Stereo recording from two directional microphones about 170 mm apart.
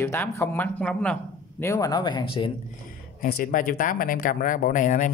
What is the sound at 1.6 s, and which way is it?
Speech, 20° left (ahead or behind).